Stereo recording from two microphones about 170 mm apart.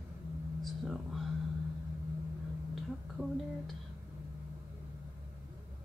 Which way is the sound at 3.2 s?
10° right (ahead or behind).